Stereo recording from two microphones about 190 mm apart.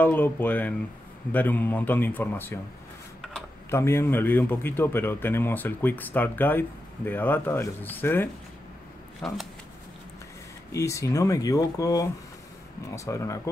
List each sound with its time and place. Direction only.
0.0 s a man's voice: 10° left (ahead or behind)
3.7 s a man's voice: 15° left (ahead or behind)
10.7 s a man's voice: 15° left (ahead or behind)